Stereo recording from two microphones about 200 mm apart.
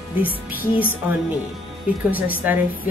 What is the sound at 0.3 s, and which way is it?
Music, 45° left (ahead or behind).